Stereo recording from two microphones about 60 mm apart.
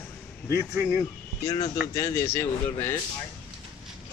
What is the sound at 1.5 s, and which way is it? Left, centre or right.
Speech, left.